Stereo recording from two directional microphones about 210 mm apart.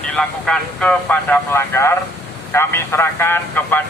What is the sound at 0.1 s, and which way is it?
Speech, 5° left (ahead or behind).